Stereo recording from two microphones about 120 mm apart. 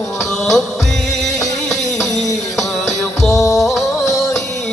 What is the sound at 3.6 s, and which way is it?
Music, centre (ahead or behind).